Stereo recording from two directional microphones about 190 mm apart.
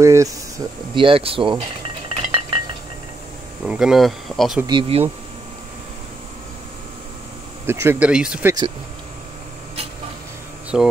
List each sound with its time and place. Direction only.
0.0 s speech: 15° right (ahead or behind)
0.9 s speech: 30° right (ahead or behind)
2.0 s a sound: 30° right (ahead or behind)
3.6 s speech: 5° right (ahead or behind)
4.6 s speech: 25° right (ahead or behind)
7.6 s speech: 15° right (ahead or behind)
10.7 s speech: 5° right (ahead or behind)